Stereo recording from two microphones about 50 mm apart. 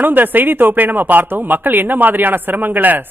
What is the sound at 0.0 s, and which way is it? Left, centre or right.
Speech, right.